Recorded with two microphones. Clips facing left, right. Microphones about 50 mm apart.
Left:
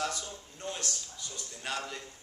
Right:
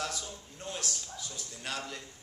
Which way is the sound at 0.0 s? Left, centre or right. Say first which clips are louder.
Left 2 dB; centre.